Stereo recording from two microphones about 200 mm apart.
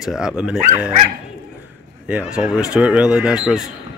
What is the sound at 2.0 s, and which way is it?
Speech, 5° right (ahead or behind).